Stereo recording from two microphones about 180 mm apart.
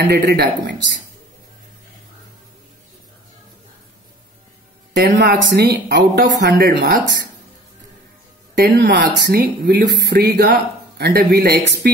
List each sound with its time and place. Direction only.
0.1 s speech: 65° right (ahead or behind)
4.9 s speech: 60° right (ahead or behind)
6.4 s speech: 55° right (ahead or behind)
8.5 s speech: 75° right (ahead or behind)